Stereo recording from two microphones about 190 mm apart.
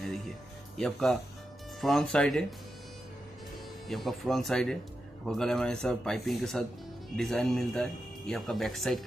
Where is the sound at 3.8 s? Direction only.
Centre (ahead or behind).